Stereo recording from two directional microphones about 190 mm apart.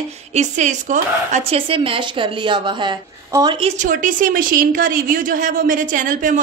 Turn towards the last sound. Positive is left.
turn(degrees=-45)  # may be behind; listen again after turning